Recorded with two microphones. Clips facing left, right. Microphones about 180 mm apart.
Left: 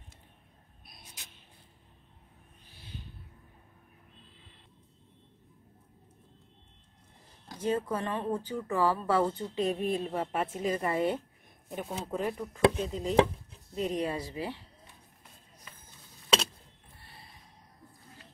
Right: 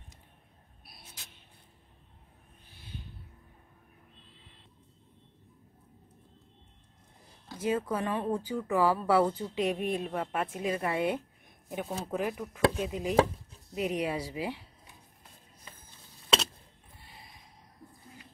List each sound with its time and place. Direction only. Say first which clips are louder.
7.6 s speech: even; 10° right (ahead or behind)
10.1 s speech: left 1 dB; 5° left (ahead or behind)
10.5 s speech: left 1 dB; 5° right (ahead or behind)
15.7 s a sound: right 2 dB; 30° right (ahead or behind)
17.1 s gasp: right 1 dB; 15° right (ahead or behind)